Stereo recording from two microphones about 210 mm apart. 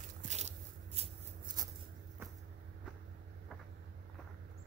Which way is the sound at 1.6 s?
20° right (ahead or behind).